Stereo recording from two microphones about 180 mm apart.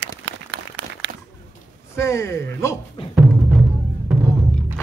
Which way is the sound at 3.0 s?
35° left (ahead or behind).